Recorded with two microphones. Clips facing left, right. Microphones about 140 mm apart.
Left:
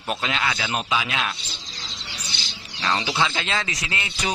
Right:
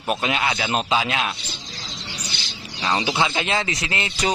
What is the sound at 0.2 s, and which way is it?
Speech, 20° right (ahead or behind).